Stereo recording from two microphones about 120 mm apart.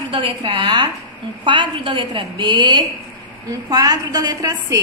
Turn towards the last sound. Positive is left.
turn(degrees=-30)  # may be behind; listen again after turning